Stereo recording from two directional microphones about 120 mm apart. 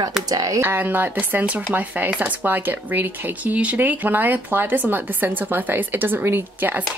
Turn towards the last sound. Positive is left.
turn(degrees=-15)  # may be behind; listen again after turning